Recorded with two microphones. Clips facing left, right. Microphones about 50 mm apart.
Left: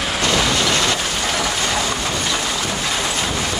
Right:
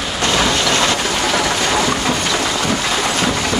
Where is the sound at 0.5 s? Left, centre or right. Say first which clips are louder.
Right 2 dB; right.